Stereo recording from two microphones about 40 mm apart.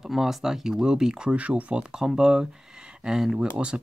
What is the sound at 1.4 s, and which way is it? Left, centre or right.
Speech, right.